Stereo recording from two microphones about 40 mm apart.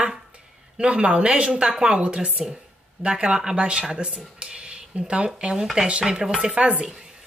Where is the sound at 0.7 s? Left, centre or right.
Right.